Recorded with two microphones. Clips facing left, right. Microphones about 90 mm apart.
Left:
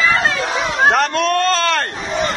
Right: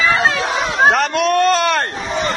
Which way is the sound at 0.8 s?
Centre (ahead or behind).